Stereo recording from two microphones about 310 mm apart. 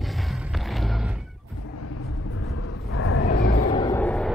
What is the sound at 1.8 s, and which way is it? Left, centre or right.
Vehicle, left.